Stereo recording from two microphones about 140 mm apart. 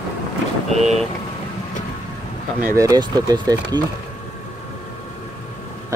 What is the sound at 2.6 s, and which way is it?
Speech, 20° right (ahead or behind).